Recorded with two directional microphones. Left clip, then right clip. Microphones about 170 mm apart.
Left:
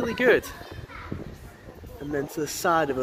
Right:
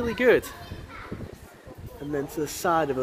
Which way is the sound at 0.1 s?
5° right (ahead or behind).